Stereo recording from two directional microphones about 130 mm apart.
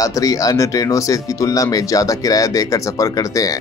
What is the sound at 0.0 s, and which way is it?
Speech, 25° left (ahead or behind).